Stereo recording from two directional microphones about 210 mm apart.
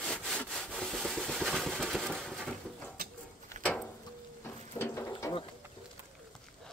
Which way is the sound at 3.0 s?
45° right (ahead or behind).